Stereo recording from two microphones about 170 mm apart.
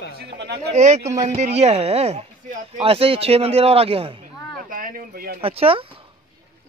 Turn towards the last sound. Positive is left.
turn(degrees=-35)  # may be behind; listen again after turning